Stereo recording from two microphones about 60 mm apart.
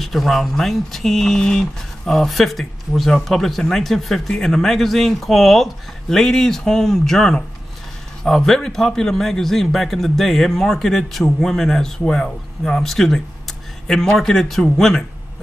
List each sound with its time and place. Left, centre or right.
0.0 s a man's voice: centre